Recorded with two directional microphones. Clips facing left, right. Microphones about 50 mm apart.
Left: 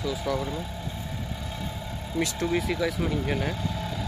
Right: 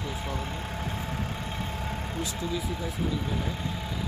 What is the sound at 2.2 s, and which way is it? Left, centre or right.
Speech, left.